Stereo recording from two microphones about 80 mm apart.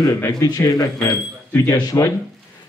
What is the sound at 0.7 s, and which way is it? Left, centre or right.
A man's voice, left.